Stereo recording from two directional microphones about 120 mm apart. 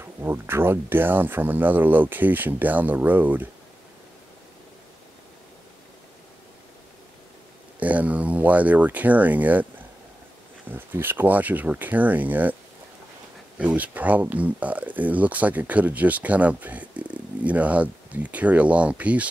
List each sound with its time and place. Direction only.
0.0 s speech: 20° right (ahead or behind)
7.8 s speech: 10° right (ahead or behind)
10.7 s speech: 20° right (ahead or behind)
13.6 s speech: 15° right (ahead or behind)